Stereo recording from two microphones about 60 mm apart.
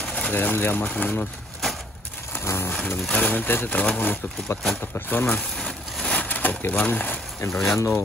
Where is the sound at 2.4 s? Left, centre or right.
Left.